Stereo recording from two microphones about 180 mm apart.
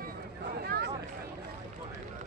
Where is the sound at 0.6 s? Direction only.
60° right (ahead or behind).